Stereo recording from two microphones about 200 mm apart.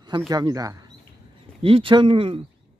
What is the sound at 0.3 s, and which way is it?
Speech, 20° right (ahead or behind).